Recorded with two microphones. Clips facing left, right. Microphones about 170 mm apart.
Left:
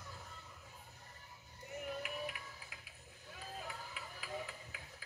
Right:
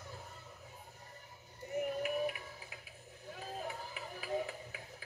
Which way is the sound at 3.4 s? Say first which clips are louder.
Right 5 dB; 40° right (ahead or behind).